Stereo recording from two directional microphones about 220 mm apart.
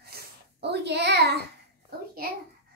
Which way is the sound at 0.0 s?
50° right (ahead or behind).